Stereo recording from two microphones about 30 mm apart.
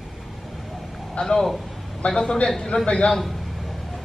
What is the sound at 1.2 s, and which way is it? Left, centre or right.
Speech, left.